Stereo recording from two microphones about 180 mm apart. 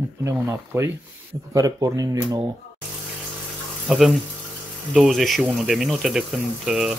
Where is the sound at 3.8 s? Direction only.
Centre (ahead or behind).